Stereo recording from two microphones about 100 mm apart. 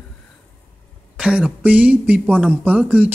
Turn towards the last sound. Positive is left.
turn(degrees=-15)  # may be behind; listen again after turning